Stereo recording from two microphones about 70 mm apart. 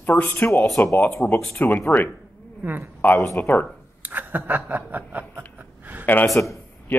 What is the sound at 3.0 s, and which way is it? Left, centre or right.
Speech, left.